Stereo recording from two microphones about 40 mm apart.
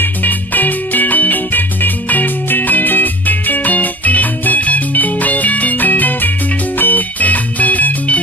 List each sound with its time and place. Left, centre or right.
0.0 s music: left